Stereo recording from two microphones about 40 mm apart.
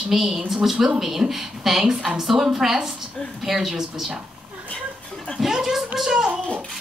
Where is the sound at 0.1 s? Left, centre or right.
Centre.